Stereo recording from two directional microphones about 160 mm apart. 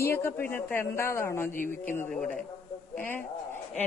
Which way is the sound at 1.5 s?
55° left (ahead or behind).